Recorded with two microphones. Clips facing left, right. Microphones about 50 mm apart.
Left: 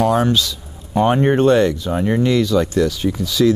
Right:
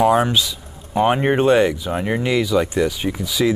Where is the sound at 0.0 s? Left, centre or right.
Centre.